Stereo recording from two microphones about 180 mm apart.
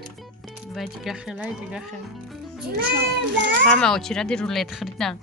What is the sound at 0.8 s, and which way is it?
A woman's voice, centre (ahead or behind).